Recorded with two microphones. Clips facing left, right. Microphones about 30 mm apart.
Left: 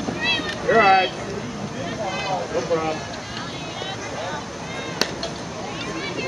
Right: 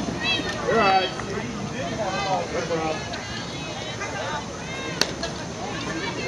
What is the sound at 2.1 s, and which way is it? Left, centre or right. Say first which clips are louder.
Vehicle: left 1 dB; centre.